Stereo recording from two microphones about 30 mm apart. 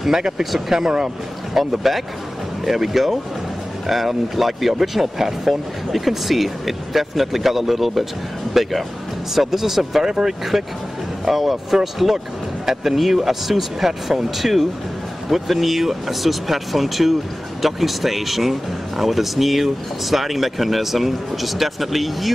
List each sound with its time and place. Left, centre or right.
0.4 s speech: centre
0.7 s speech: right
1.7 s speech: centre